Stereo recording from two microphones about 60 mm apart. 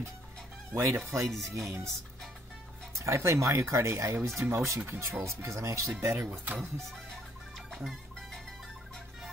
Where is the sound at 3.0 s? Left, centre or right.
Right.